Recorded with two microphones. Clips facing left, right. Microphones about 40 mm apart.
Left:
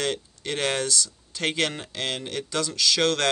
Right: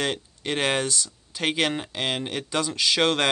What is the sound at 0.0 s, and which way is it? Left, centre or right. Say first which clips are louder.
Speech: right 1 dB; centre.